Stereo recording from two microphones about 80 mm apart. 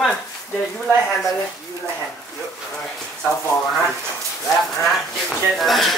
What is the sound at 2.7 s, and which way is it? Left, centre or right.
Speech, centre.